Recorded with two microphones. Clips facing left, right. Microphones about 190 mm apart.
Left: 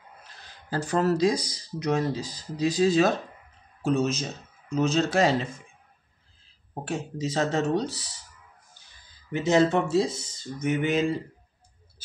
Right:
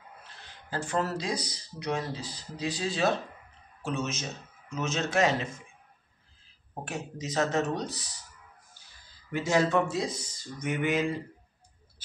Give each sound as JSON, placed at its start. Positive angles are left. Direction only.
{"t": 0.4, "sound": "a man's voice", "side_deg": 40}
{"t": 6.7, "sound": "speech", "side_deg": 30}
{"t": 9.3, "sound": "speech", "side_deg": 20}